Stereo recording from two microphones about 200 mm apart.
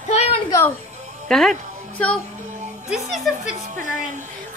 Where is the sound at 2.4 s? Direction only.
35° right (ahead or behind).